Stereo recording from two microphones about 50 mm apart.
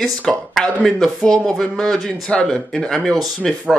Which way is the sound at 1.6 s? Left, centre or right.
Centre.